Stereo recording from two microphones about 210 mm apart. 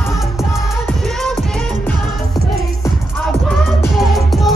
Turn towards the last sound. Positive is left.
turn(degrees=0)  # may be behind; listen again after turning